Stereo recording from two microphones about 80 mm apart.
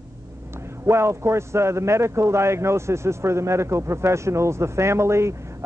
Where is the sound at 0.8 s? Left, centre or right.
Right.